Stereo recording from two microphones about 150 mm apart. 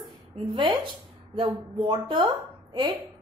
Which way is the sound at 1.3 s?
35° right (ahead or behind).